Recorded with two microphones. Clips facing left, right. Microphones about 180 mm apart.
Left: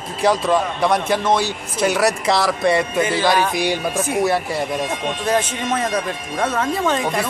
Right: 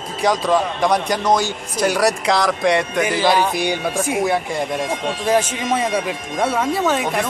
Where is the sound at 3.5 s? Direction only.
Centre (ahead or behind).